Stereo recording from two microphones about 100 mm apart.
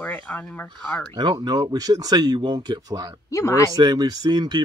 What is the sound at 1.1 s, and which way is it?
Speech, 45° right (ahead or behind).